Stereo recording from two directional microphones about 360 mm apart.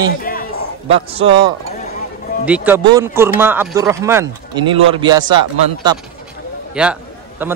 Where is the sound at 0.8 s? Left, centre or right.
Centre.